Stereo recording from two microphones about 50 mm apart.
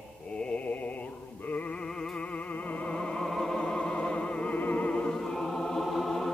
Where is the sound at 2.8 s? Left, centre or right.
Centre.